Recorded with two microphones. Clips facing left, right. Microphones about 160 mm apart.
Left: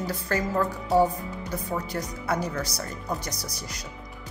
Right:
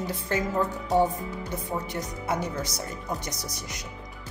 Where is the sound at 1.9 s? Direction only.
20° right (ahead or behind).